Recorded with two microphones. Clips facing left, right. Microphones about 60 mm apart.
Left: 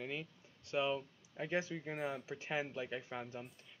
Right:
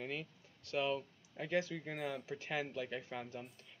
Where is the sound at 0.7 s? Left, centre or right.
Centre.